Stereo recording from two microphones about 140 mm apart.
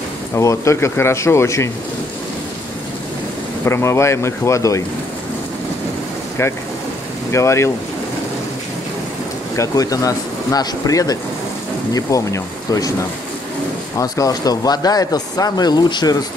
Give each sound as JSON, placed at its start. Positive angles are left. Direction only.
{"t": 0.3, "sound": "speech", "side_deg": 20}
{"t": 3.6, "sound": "speech", "side_deg": 20}
{"t": 7.2, "sound": "speech", "side_deg": 20}
{"t": 9.6, "sound": "speech", "side_deg": 25}
{"t": 13.9, "sound": "speech", "side_deg": 25}